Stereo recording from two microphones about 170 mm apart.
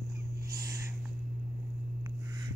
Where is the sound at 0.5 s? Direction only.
20° right (ahead or behind).